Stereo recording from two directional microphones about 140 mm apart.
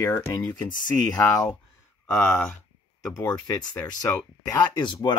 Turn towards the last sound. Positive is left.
turn(degrees=35)  # may be behind; listen again after turning